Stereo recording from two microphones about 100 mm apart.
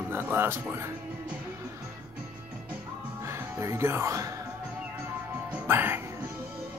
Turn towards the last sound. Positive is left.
turn(degrees=-20)  # may be behind; listen again after turning